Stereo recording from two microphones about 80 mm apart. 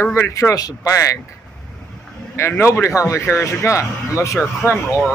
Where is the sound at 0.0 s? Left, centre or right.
Left.